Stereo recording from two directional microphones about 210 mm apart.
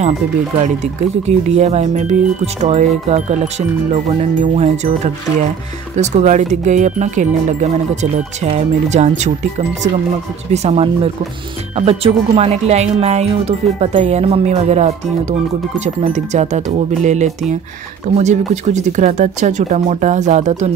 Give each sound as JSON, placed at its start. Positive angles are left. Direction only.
{"t": 1.2, "sound": "speech", "side_deg": -30}
{"t": 10.5, "sound": "speech", "side_deg": -30}